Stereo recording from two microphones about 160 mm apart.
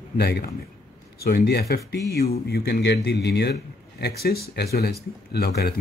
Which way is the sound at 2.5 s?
90° left.